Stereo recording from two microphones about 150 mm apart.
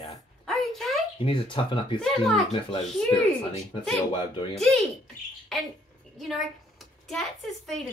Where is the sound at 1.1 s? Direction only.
35° left (ahead or behind).